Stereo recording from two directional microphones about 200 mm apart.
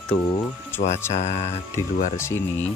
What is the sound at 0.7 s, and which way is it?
Music, 10° left (ahead or behind).